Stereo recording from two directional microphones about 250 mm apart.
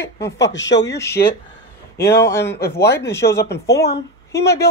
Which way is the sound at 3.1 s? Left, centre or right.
Centre.